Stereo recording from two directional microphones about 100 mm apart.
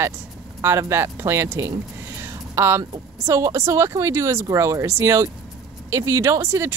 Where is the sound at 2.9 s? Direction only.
35° right (ahead or behind).